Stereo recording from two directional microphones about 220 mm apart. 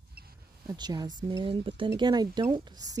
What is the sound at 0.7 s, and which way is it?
Speech, 20° right (ahead or behind).